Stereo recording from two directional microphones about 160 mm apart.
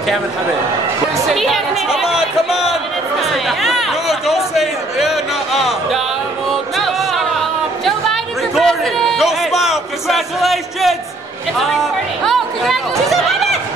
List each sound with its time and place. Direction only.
1.3 s chatter: centre (ahead or behind)
11.5 s speech: centre (ahead or behind)
12.3 s chatter: centre (ahead or behind)